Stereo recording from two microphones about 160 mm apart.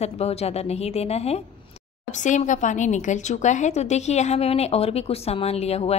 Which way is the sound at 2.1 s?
50° left (ahead or behind).